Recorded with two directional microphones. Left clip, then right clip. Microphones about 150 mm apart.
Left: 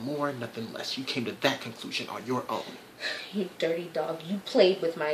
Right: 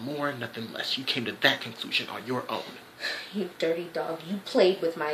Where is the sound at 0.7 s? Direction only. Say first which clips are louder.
Right 4 dB; 10° left (ahead or behind).